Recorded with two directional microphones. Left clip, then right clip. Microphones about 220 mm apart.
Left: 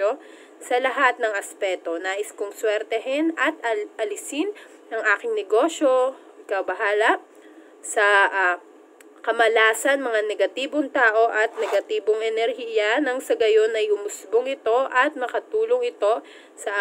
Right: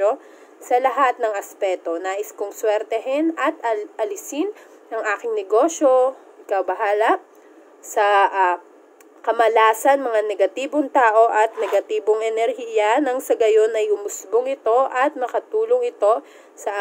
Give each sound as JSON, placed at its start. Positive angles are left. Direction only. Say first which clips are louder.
{"t": 0.7, "sound": "a woman's voice", "louder": "right 3 dB", "side_deg": 5}